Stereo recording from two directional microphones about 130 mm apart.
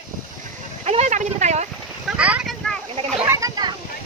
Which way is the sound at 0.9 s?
60° right (ahead or behind).